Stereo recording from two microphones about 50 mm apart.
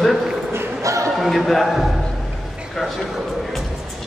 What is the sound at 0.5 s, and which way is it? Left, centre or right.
Basketball bounce, right.